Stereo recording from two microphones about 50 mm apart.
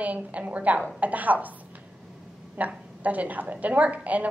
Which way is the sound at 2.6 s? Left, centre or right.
Right.